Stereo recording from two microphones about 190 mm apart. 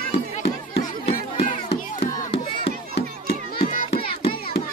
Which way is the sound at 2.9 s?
55° left (ahead or behind).